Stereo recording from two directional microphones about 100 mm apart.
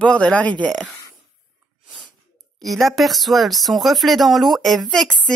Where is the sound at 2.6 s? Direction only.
Centre (ahead or behind).